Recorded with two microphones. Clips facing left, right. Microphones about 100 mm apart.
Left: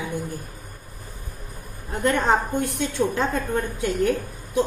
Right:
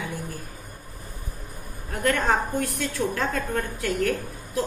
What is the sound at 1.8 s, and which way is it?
A woman's voice, 20° left (ahead or behind).